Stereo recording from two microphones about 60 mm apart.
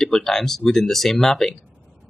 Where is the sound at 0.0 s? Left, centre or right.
Centre.